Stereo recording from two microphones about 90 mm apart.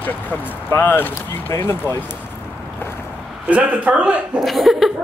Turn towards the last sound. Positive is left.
turn(degrees=0)  # may be behind; listen again after turning